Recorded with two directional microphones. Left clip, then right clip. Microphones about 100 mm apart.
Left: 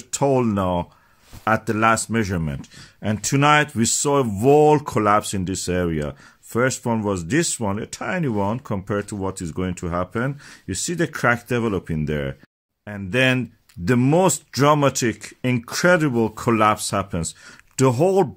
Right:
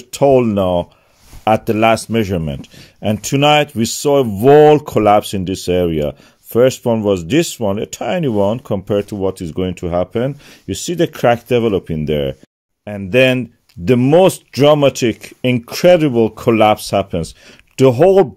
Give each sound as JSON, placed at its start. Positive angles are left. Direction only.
{"t": 0.1, "sound": "speech", "side_deg": -20}
{"t": 13.4, "sound": "speech", "side_deg": -15}